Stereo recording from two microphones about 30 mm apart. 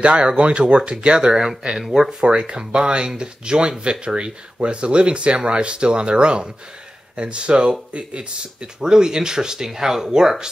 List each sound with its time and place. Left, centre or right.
0.0 s speech: right
1.3 s speech: centre
2.2 s speech: right; by 10.4 s centre